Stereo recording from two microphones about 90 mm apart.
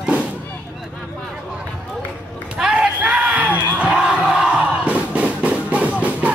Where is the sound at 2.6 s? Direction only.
10° right (ahead or behind).